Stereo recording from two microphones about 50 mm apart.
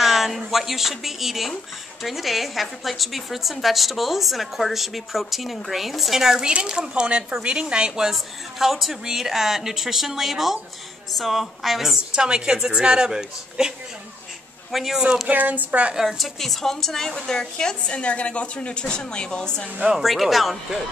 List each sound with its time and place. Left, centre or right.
0.0 s a sound: centre
0.5 s a woman's voice: centre
8.1 s a woman's voice: centre
12.1 s a woman's voice: centre
15.2 s a woman's voice: right
15.9 s a woman's voice: centre
19.9 s a woman's voice: centre